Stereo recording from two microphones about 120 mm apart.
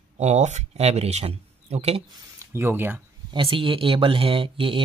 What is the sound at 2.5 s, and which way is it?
Speech, 20° right (ahead or behind).